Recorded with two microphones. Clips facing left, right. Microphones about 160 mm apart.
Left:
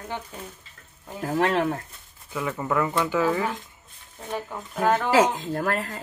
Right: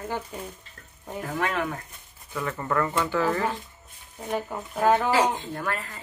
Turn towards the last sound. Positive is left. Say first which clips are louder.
# left 5 dB
turn(degrees=45)  # may be behind; listen again after turning